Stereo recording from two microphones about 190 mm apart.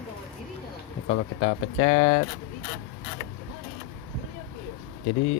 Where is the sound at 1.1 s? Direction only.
60° left (ahead or behind).